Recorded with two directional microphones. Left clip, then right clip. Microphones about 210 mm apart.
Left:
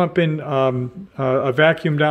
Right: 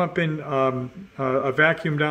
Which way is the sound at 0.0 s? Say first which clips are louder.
Left 5 dB; 35° left (ahead or behind).